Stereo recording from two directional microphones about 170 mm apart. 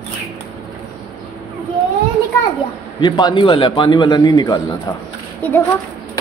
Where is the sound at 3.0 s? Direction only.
25° left (ahead or behind).